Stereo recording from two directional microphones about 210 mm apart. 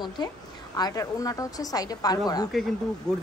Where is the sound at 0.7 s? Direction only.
15° left (ahead or behind).